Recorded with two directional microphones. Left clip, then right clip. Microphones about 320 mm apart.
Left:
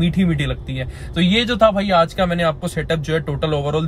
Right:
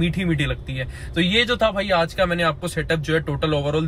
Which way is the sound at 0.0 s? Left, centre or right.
Centre.